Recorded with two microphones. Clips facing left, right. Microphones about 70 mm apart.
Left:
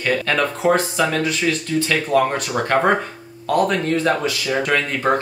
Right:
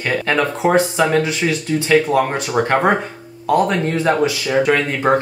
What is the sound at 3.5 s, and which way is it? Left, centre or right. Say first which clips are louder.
Speech: right 2 dB; centre.